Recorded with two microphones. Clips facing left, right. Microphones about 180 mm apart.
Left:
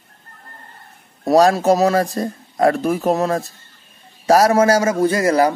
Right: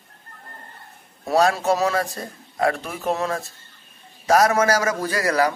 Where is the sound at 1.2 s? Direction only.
40° left (ahead or behind).